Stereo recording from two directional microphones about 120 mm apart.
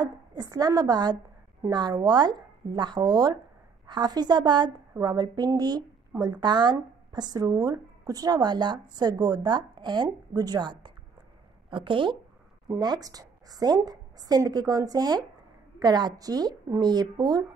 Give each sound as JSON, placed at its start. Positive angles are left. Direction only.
{"t": 0.0, "sound": "a woman's voice", "side_deg": -35}